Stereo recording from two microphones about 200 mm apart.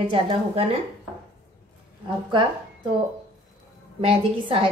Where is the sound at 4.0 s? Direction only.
25° right (ahead or behind).